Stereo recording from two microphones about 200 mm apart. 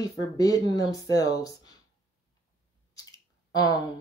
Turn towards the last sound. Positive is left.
turn(degrees=20)  # may be behind; listen again after turning